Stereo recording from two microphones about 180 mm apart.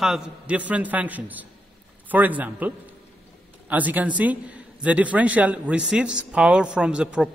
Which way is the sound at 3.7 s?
10° right (ahead or behind).